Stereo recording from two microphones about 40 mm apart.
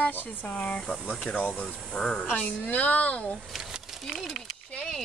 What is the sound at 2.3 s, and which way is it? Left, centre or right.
Speech, left.